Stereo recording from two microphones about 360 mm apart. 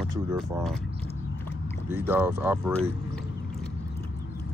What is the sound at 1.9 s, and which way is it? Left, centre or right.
Speech, centre.